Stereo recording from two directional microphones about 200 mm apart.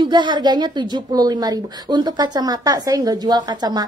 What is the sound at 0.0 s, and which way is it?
A woman's voice, 25° right (ahead or behind).